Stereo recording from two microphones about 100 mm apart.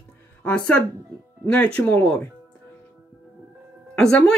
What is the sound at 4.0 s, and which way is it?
Speech, 10° left (ahead or behind).